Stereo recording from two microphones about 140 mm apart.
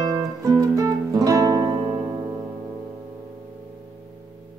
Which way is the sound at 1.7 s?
40° right (ahead or behind).